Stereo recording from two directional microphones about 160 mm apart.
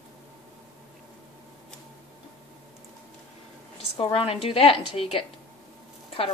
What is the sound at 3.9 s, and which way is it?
A woman's voice, 35° left (ahead or behind).